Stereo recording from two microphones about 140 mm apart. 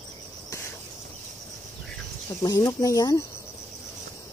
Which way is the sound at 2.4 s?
25° left (ahead or behind).